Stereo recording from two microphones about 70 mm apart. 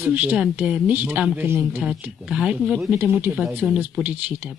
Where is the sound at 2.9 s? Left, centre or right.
Right.